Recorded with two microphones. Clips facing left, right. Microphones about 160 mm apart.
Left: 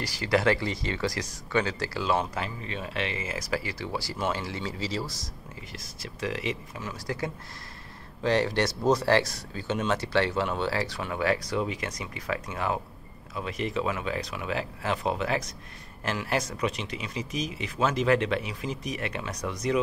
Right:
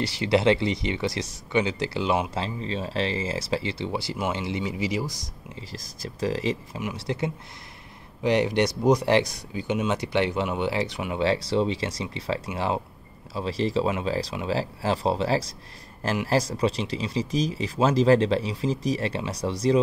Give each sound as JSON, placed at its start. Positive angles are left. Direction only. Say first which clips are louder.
{"t": 0.0, "sound": "speech", "louder": "right 4 dB", "side_deg": -25}
{"t": 5.7, "sound": "speech", "louder": "right 5 dB", "side_deg": -35}
{"t": 6.8, "sound": "speech", "louder": "right 4 dB", "side_deg": -20}
{"t": 11.2, "sound": "speech", "louder": "right 4 dB", "side_deg": -30}